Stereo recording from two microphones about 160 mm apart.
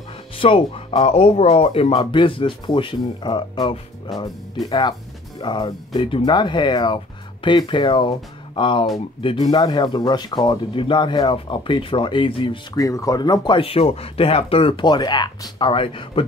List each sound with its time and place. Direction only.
0.4 s speech: 35° left (ahead or behind)
12.7 s speech: 20° left (ahead or behind)